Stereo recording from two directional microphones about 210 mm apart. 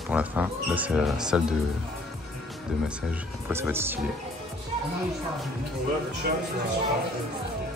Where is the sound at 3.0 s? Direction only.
10° right (ahead or behind).